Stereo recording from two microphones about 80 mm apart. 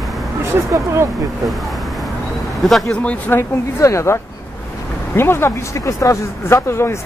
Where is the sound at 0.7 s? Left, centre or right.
Right.